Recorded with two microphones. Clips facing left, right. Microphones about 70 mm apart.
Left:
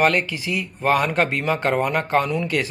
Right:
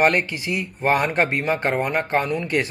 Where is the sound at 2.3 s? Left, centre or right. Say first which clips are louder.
Left 1 dB; right.